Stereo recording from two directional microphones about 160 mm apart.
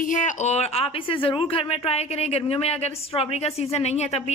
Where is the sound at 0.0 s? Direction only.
50° left (ahead or behind).